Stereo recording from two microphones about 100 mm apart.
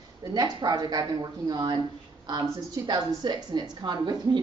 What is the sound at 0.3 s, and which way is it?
A woman's voice, 45° right (ahead or behind).